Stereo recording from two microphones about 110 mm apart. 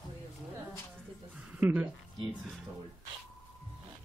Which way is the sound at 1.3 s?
15° right (ahead or behind).